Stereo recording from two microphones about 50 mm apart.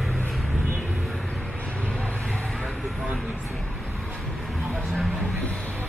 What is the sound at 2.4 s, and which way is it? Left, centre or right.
Vehicle, centre.